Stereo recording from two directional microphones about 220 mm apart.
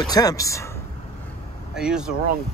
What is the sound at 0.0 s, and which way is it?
Speech, 15° left (ahead or behind).